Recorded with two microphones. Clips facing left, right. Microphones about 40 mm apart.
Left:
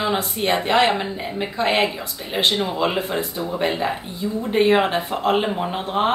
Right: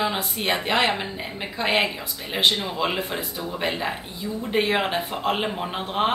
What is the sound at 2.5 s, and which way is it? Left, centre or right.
Speech, centre.